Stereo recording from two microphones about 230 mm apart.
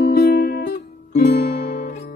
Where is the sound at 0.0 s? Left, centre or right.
Left.